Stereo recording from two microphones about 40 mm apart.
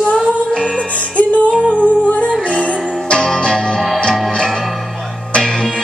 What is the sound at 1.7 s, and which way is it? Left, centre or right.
Humming, left.